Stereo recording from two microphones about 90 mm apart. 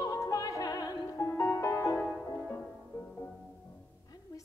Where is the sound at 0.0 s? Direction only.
40° left (ahead or behind).